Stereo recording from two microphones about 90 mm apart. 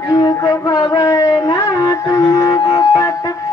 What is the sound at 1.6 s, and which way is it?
Wind instrument, 40° left (ahead or behind).